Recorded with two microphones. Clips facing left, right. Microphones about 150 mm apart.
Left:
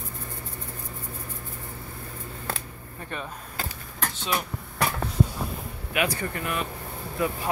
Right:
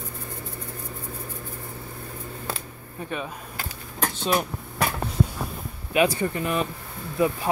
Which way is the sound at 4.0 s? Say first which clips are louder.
Right 5 dB; 45° right (ahead or behind).